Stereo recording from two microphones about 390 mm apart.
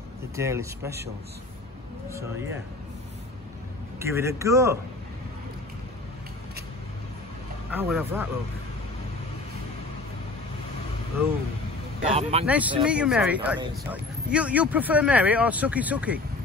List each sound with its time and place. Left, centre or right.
0.4 s speech: centre
2.0 s speech: centre
4.0 s speech: centre
7.7 s speech: centre
12.1 s speech: centre
12.4 s speech: centre